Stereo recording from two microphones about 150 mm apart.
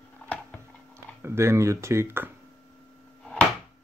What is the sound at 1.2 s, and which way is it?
Speech, 15° right (ahead or behind).